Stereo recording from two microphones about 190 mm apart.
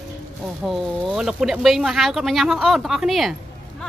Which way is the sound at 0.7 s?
Centre (ahead or behind).